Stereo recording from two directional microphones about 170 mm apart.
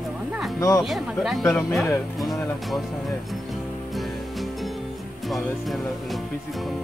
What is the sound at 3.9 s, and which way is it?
Music, centre (ahead or behind).